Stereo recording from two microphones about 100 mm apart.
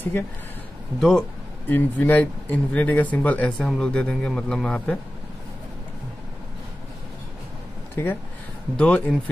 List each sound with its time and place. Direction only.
0.9 s speech: 25° right (ahead or behind)
1.7 s speech: 20° left (ahead or behind)
7.9 s speech: 20° left (ahead or behind)
8.7 s speech: 10° left (ahead or behind)